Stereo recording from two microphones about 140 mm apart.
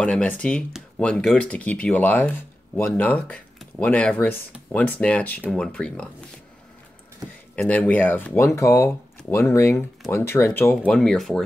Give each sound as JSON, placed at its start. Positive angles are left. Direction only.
{"t": 0.0, "sound": "speech", "side_deg": 5}
{"t": 7.5, "sound": "speech", "side_deg": 10}
{"t": 10.9, "sound": "speech", "side_deg": 5}